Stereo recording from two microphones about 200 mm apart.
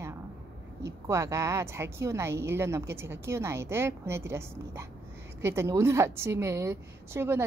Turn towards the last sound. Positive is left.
turn(degrees=-10)  # may be behind; listen again after turning